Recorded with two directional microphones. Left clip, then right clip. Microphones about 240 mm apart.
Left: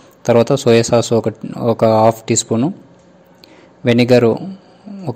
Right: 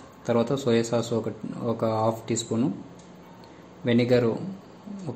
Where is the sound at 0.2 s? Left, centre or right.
Left.